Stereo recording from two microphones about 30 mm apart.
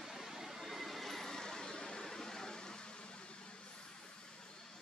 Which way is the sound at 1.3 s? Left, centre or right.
Left.